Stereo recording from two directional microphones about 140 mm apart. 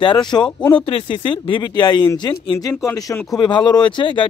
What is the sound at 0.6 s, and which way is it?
Speech, 10° left (ahead or behind).